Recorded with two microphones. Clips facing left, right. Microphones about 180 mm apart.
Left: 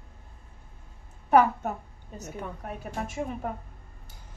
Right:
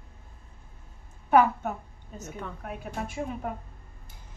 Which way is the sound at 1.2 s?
40° left (ahead or behind).